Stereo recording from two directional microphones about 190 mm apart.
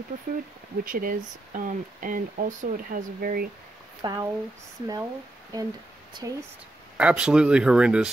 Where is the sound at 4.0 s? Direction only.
20° right (ahead or behind).